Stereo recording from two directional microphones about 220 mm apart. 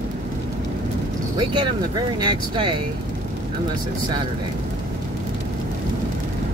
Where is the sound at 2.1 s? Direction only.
20° right (ahead or behind).